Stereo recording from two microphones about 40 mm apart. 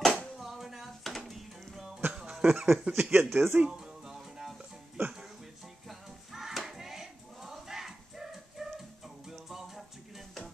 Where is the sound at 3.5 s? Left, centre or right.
Right.